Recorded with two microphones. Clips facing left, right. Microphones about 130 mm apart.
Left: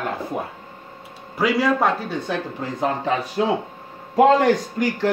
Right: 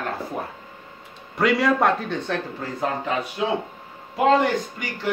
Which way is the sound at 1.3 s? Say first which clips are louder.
Even; centre (ahead or behind).